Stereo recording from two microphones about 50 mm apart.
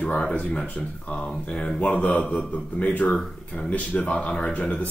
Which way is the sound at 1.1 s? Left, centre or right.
Left.